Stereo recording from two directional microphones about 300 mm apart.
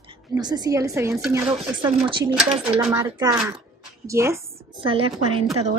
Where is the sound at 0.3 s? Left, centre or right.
Centre.